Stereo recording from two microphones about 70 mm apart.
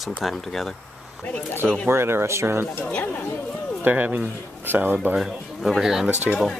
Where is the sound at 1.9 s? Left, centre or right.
Right.